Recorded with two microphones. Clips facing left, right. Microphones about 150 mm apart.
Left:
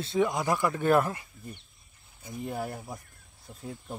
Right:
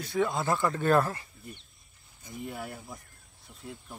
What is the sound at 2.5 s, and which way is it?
Speech, 40° left (ahead or behind).